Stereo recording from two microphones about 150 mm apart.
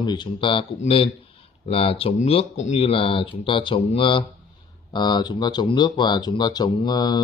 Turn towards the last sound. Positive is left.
turn(degrees=25)  # may be behind; listen again after turning